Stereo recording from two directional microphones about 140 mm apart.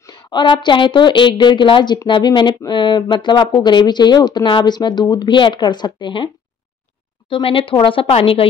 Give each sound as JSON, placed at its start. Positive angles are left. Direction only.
{"t": 0.0, "sound": "a woman's voice", "side_deg": 30}